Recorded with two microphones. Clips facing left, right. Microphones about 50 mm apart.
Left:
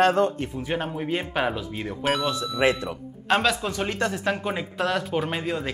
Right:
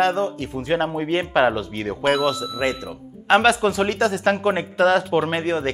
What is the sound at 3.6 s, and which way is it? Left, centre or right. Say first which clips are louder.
Speech: right 9 dB; right.